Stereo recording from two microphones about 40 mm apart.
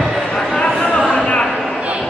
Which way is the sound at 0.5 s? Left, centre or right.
Left.